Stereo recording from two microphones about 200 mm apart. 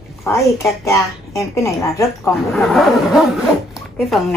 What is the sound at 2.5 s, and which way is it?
Speech, centre (ahead or behind).